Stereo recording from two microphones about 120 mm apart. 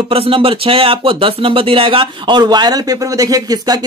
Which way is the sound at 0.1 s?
50° right (ahead or behind).